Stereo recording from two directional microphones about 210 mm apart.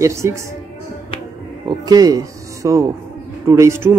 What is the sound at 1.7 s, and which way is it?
Speech, 20° right (ahead or behind).